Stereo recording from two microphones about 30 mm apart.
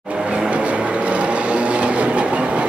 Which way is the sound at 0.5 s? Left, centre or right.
Right.